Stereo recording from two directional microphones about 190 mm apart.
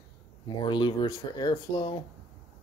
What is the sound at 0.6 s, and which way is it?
Speech, 25° left (ahead or behind).